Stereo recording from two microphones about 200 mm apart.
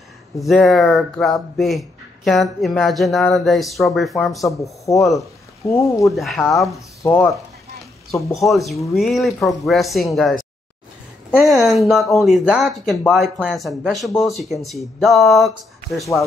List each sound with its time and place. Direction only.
0.4 s speech: centre (ahead or behind)
4.4 s speech: 15° left (ahead or behind)
6.0 s speech: centre (ahead or behind)
7.0 s speech: 15° left (ahead or behind)
8.5 s speech: centre (ahead or behind)